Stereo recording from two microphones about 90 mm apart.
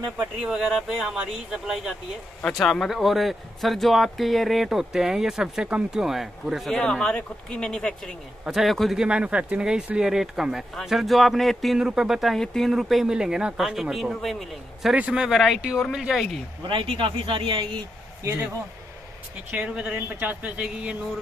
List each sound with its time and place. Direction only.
0.4 s speech: 5° right (ahead or behind)
15.0 s speech: 10° right (ahead or behind)
16.6 s speech: 80° right; by 17.7 s 65° right (ahead or behind)
19.5 s speech: 10° right (ahead or behind)